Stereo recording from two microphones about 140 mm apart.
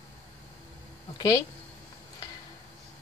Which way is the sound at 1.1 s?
30° left (ahead or behind).